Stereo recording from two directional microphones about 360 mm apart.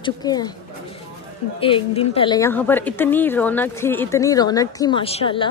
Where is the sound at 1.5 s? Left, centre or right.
Centre.